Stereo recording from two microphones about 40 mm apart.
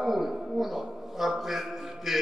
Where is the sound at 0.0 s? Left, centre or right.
Centre.